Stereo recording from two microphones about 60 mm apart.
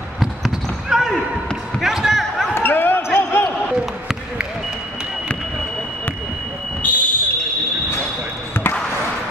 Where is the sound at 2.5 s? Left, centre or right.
Left.